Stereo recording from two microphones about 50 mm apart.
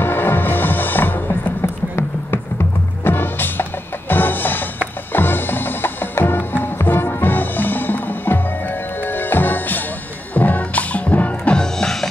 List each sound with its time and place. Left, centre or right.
0.0 s music: left
3.0 s music: left
11.5 s music: centre